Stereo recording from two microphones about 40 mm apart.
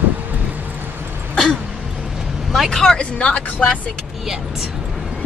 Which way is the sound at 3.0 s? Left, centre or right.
Left.